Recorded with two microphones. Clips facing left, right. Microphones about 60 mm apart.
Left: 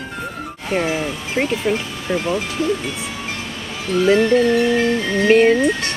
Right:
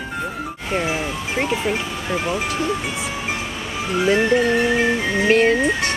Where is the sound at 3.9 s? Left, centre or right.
Centre.